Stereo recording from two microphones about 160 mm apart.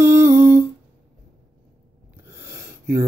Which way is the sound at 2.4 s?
15° right (ahead or behind).